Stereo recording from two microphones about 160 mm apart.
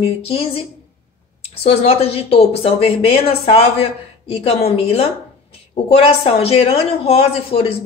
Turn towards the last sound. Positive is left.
turn(degrees=40)  # may be behind; listen again after turning